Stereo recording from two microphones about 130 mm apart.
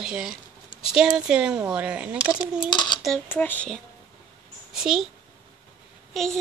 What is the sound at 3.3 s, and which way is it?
Speech, 15° left (ahead or behind).